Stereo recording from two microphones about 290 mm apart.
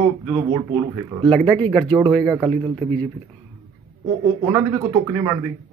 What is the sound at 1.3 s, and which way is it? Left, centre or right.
Speech, centre.